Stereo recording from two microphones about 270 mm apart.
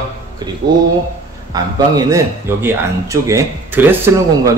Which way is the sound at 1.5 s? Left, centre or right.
Centre.